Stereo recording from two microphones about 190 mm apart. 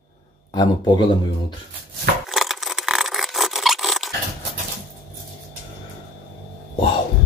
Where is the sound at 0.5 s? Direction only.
20° left (ahead or behind).